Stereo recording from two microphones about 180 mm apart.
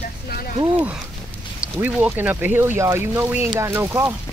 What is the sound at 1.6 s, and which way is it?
Speech, 10° right (ahead or behind).